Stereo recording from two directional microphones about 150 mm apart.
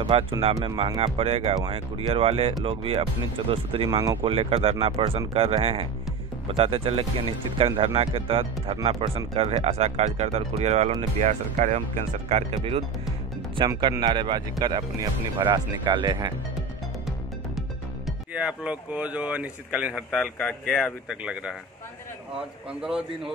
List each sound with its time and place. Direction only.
0.1 s speech: 40° right (ahead or behind)
13.6 s speech: 30° right (ahead or behind)
17.6 s speech: 5° right (ahead or behind)
20.1 s speech: 5° left (ahead or behind)